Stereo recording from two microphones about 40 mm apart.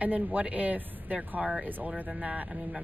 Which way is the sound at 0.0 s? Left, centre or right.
Right.